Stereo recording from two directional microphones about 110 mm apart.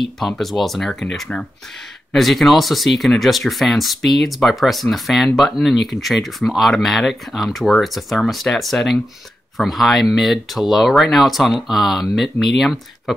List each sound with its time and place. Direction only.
0.4 s speech: centre (ahead or behind)